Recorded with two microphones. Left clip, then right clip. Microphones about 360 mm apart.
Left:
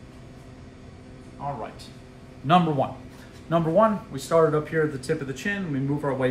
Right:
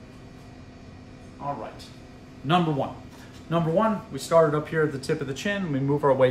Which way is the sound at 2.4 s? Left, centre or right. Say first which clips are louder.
Left 3 dB; centre.